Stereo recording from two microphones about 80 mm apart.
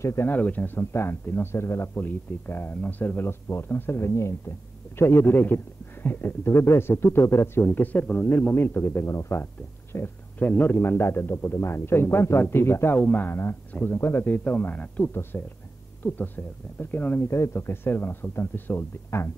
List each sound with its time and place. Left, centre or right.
0.0 s speech: left
17.3 s speech: left